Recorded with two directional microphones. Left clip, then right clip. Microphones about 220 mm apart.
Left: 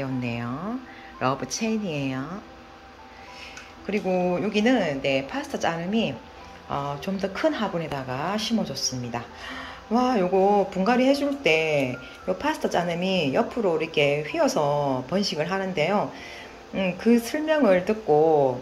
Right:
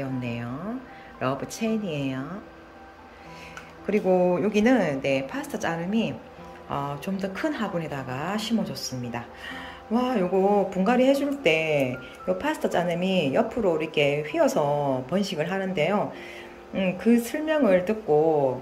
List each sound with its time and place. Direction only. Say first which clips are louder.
0.0 s speech: left 2 dB; 10° right (ahead or behind)
3.8 s speech: right 3 dB; 20° right (ahead or behind)